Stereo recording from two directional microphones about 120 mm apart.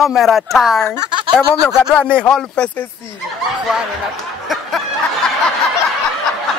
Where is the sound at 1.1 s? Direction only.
40° right (ahead or behind).